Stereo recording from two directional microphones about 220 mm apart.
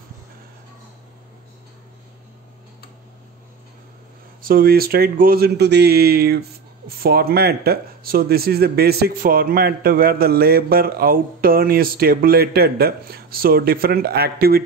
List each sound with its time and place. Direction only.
4.4 s speech: 40° right (ahead or behind)